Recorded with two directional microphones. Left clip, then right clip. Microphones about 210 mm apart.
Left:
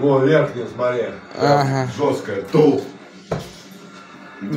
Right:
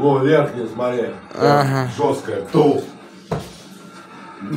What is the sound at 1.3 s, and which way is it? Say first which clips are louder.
Speech: right 1 dB; 15° right (ahead or behind).